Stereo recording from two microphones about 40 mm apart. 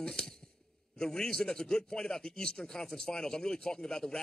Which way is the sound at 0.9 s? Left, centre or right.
Centre.